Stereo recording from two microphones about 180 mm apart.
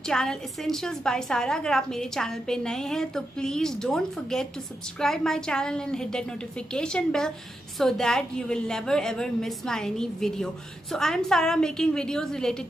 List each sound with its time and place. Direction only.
0.1 s a woman's voice: 5° left (ahead or behind)